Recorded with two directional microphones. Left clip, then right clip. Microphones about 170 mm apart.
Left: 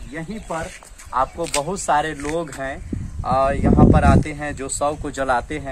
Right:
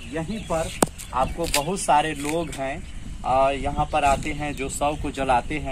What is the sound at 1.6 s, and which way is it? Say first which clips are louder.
Speech: even; 5° right (ahead or behind).